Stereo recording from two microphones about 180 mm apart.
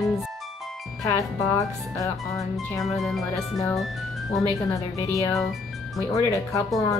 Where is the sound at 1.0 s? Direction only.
15° left (ahead or behind).